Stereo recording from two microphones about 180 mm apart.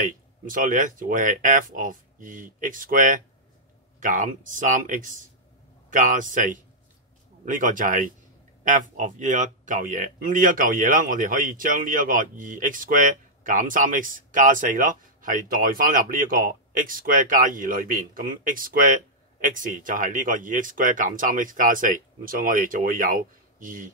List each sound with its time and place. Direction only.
0.0 s speech: 45° right (ahead or behind)